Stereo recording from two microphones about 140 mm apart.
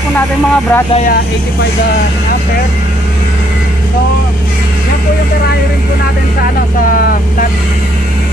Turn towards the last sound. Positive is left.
turn(degrees=80)